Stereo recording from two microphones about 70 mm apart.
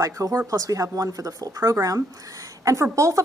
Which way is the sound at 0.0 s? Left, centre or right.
Right.